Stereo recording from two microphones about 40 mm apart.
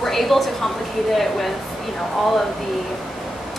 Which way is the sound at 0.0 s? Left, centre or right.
Centre.